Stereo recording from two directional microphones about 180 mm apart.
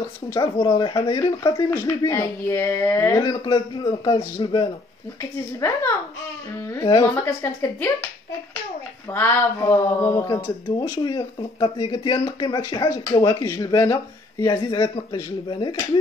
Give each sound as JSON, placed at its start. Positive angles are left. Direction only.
{"t": 0.3, "sound": "speech", "side_deg": 20}
{"t": 5.6, "sound": "speech", "side_deg": 15}
{"t": 9.1, "sound": "speech", "side_deg": 15}